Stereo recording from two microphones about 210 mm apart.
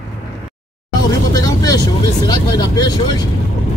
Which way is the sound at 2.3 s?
20° left (ahead or behind).